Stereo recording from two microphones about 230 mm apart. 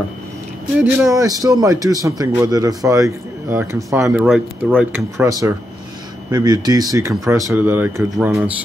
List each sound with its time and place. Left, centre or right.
0.7 s speech: centre